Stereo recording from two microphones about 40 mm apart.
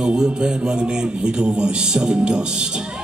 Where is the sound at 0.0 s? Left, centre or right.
Centre.